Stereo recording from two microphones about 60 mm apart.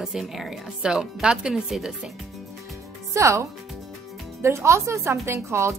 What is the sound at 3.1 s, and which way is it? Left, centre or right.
Speech, right.